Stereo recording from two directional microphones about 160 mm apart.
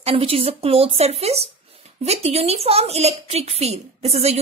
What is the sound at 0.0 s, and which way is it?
A woman's voice, 35° right (ahead or behind).